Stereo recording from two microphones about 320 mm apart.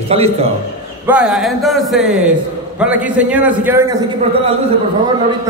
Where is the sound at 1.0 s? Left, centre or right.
Centre.